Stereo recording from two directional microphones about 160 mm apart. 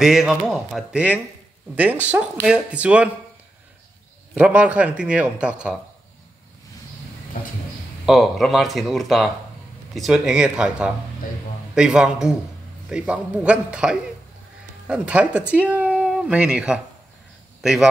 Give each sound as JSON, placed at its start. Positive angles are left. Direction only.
{"t": 0.0, "sound": "speech", "side_deg": 0}
{"t": 4.4, "sound": "speech", "side_deg": -10}
{"t": 7.3, "sound": "speech", "side_deg": 55}
{"t": 8.0, "sound": "speech", "side_deg": 0}